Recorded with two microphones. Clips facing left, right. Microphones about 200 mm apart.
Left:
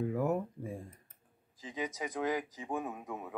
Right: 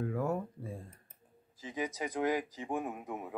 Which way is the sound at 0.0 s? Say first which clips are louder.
Left 2 dB; 15° left (ahead or behind).